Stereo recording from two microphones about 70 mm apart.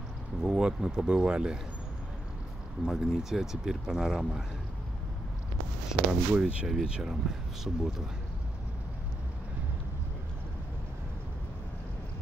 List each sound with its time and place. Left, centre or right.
0.4 s a sound: centre
0.7 s speech: centre
2.8 s speech: centre
5.9 s speech: centre